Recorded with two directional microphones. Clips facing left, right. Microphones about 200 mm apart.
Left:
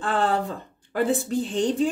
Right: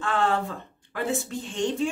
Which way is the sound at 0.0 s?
35° left (ahead or behind).